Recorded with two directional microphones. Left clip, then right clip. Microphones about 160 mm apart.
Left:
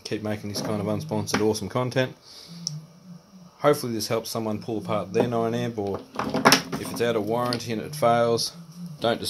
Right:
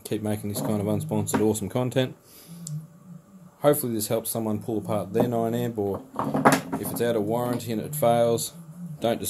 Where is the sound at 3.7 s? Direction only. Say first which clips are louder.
Even; 5° left (ahead or behind).